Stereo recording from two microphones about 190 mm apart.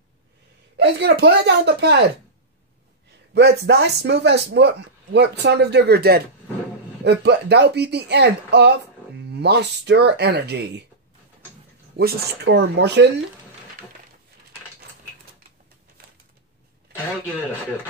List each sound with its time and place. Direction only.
0.7 s speech: 65° right (ahead or behind)
3.3 s speech: 60° right (ahead or behind)
12.0 s speech: 55° right (ahead or behind)